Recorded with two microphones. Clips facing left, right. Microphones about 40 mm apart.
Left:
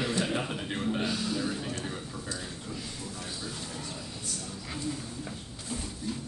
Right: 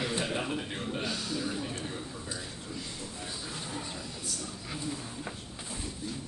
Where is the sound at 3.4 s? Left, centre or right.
Centre.